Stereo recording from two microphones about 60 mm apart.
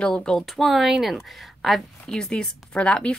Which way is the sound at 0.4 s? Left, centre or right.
Centre.